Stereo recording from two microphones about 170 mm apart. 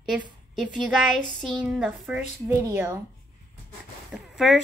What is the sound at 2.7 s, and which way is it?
Speech, 15° right (ahead or behind).